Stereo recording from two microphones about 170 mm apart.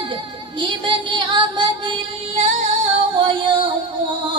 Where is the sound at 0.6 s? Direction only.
30° right (ahead or behind).